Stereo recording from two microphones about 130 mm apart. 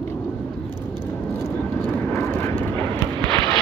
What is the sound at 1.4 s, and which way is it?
Vehicle, 10° left (ahead or behind).